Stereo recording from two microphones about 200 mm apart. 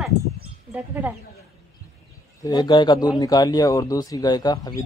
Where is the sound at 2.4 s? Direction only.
20° left (ahead or behind).